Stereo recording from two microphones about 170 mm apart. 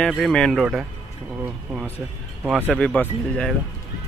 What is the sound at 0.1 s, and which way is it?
Speech, 5° left (ahead or behind).